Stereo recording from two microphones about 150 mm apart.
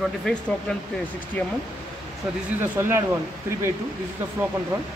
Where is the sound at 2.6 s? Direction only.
15° right (ahead or behind).